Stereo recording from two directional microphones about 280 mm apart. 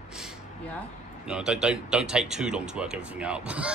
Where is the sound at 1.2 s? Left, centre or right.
Centre.